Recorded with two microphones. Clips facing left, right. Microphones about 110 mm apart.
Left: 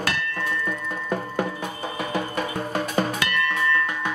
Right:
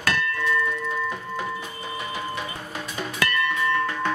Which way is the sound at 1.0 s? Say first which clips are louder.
Left 3 dB; 55° left (ahead or behind).